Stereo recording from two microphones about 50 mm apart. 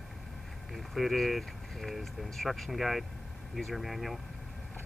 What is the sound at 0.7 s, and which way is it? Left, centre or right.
Speech, centre.